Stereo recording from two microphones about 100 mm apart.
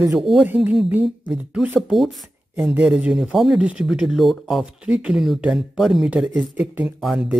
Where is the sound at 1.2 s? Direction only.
10° right (ahead or behind).